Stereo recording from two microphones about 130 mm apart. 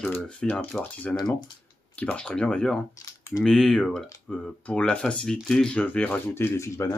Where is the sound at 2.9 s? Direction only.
25° left (ahead or behind).